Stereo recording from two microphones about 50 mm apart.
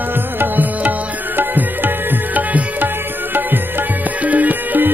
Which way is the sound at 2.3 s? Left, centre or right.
Right.